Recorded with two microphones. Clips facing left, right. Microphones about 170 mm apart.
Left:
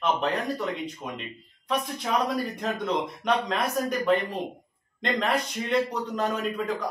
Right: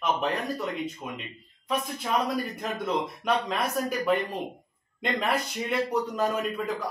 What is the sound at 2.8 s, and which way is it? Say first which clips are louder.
Speech: right 2 dB; 5° right (ahead or behind).